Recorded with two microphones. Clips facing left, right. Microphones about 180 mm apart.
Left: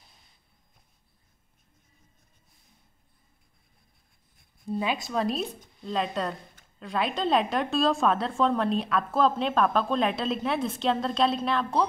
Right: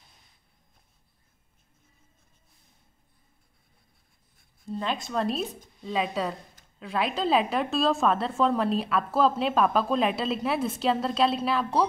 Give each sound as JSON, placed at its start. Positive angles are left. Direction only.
{"t": 4.6, "sound": "a woman's voice", "side_deg": 10}